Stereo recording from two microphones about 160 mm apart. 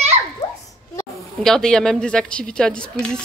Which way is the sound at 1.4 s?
5° left (ahead or behind).